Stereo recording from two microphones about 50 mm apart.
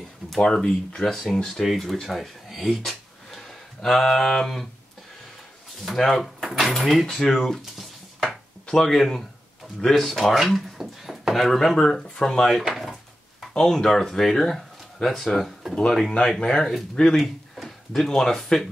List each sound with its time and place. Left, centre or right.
0.4 s speech: centre
1.3 s speech: centre
5.9 s speech: centre
7.3 s dishes: centre
8.6 s speech: centre
12.7 s drawer open or close: centre
13.5 s speech: centre
16.1 s speech: centre